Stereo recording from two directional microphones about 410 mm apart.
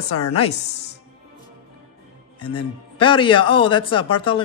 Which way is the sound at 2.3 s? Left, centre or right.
Centre.